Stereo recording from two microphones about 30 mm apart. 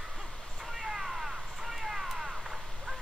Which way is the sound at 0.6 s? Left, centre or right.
Centre.